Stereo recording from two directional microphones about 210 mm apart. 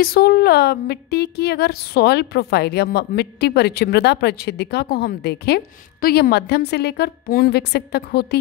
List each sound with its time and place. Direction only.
0.0 s a woman's voice: 45° left (ahead or behind)